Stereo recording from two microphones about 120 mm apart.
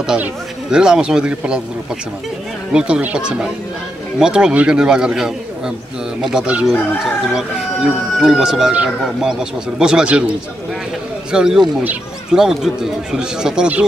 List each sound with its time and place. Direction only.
0.0 s speech: 5° right (ahead or behind)
2.7 s speech: 10° right (ahead or behind)
11.3 s speech: 5° right (ahead or behind)